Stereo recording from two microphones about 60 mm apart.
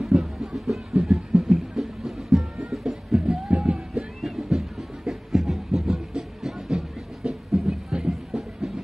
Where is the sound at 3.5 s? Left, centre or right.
Centre.